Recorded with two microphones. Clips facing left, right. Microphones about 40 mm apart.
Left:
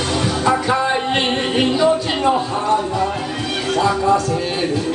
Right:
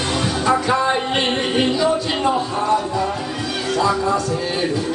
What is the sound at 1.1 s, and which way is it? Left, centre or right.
Music, left.